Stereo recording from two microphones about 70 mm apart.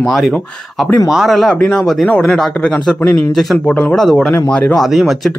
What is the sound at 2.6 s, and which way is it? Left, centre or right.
A man's voice, centre.